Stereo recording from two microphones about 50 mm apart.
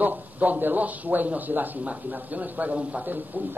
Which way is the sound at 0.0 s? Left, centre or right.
Right.